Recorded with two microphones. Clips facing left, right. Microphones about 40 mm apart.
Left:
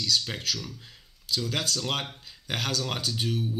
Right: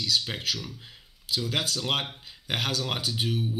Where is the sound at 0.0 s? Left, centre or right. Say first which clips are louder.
Even; centre.